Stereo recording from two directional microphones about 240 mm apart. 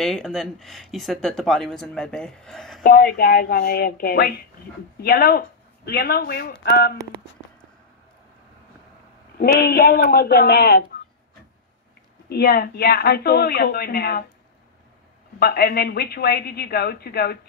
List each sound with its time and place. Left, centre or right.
0.0 s speech: centre
2.8 s a woman's voice: left
9.4 s a woman's voice: left
12.3 s a woman's voice: left
15.3 s a woman's voice: left